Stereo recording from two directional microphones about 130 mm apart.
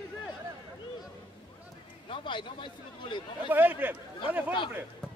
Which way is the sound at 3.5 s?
15° right (ahead or behind).